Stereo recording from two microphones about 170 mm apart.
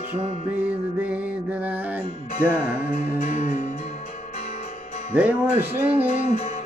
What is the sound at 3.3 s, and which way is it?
Music, 45° left (ahead or behind).